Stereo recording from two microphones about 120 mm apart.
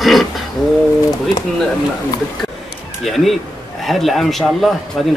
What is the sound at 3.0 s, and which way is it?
Speech, centre (ahead or behind).